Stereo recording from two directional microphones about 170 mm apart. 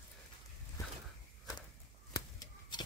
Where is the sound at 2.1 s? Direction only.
25° left (ahead or behind).